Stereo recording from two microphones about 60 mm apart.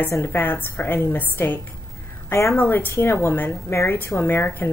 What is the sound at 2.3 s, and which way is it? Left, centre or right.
A woman's voice, left.